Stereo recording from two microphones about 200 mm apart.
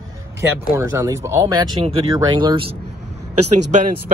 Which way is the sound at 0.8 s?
15° right (ahead or behind).